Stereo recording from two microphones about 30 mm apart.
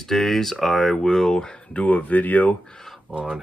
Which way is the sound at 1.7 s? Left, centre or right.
Left.